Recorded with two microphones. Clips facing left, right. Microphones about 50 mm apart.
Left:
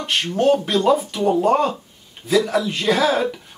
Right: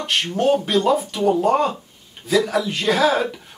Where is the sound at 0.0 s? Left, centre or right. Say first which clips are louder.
Left 1 dB; centre.